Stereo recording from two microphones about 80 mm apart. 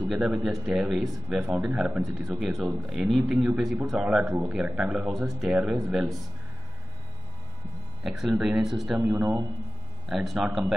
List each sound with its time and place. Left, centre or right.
0.2 s speech: centre
1.4 s speech: centre
5.0 s speech: centre
8.0 s speech: centre
9.1 s speech: right
10.0 s speech: centre